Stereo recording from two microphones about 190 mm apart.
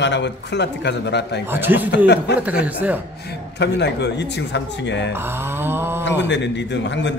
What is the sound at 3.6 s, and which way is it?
Speech, 65° left (ahead or behind).